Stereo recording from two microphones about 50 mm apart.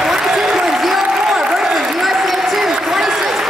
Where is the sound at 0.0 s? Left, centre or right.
Centre.